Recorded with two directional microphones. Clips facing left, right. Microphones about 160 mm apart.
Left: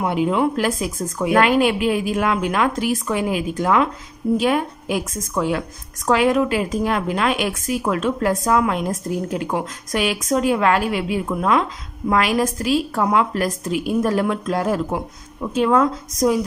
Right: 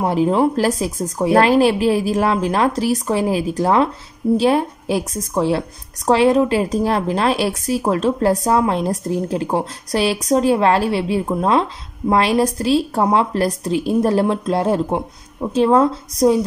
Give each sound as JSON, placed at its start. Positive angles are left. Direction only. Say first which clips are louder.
{"t": 0.0, "sound": "a woman's voice", "louder": "right 3 dB", "side_deg": -35}